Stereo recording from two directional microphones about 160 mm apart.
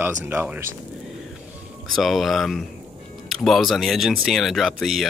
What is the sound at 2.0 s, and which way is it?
Speech, centre (ahead or behind).